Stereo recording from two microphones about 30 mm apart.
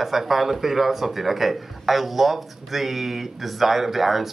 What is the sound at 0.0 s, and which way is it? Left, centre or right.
A man's voice, centre.